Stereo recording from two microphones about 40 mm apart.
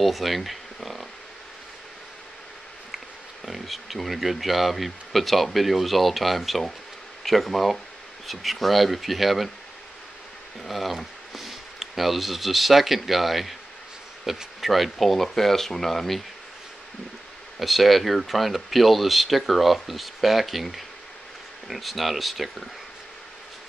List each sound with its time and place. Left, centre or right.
0.0 s bee: centre
3.4 s speech: centre
10.6 s speech: centre
17.6 s speech: centre